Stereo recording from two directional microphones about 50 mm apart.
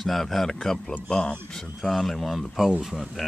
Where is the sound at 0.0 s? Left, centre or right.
Centre.